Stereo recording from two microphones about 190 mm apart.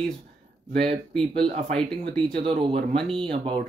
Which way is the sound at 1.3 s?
30° right (ahead or behind).